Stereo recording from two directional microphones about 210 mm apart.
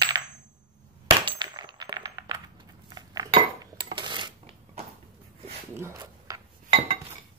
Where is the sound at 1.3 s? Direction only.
20° right (ahead or behind).